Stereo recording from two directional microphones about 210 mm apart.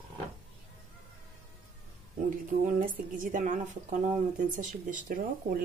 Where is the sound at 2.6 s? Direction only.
40° right (ahead or behind).